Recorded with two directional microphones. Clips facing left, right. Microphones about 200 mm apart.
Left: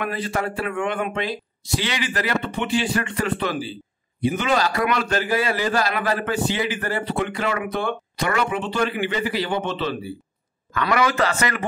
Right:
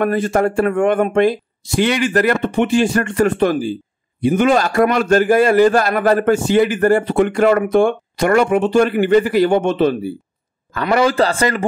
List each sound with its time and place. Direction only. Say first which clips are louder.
0.0 s a man's voice: right 10 dB; 45° right (ahead or behind)
10.7 s speech: right 6 dB; 35° right (ahead or behind)